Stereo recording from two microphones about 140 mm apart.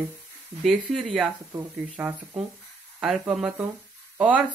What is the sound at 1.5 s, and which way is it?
Speech, 10° right (ahead or behind).